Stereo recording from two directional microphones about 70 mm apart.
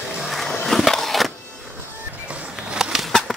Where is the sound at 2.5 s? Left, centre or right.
Centre.